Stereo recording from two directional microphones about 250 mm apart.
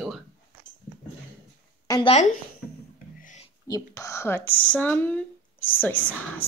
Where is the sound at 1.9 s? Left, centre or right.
Left.